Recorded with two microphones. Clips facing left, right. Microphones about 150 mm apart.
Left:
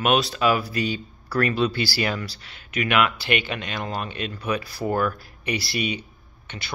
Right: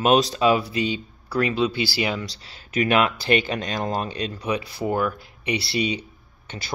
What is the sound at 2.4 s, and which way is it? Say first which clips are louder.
Speech: right 6 dB; 30° right (ahead or behind).